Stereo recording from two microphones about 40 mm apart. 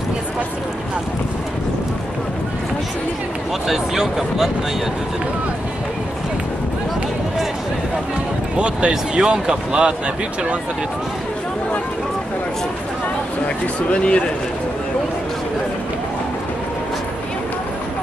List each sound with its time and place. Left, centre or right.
3.6 s speech: centre
8.5 s speech: right
13.9 s speech: left